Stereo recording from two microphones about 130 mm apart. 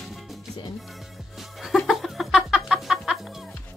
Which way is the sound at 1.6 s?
Centre (ahead or behind).